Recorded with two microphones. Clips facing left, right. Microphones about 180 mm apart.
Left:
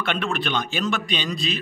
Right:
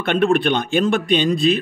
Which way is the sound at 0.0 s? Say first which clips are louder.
Right 9 dB; 50° right (ahead or behind).